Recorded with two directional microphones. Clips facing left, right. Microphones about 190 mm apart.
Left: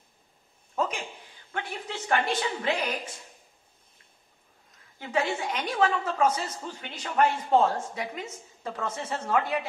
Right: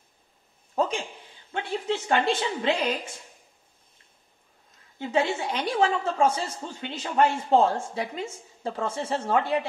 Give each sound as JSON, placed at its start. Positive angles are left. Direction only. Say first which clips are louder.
{"t": 0.7, "sound": "a sound", "louder": "right 4 dB", "side_deg": -30}
{"t": 1.5, "sound": "a woman's voice", "louder": "right 7 dB", "side_deg": -25}
{"t": 4.9, "sound": "a woman's voice", "louder": "right 3 dB", "side_deg": -30}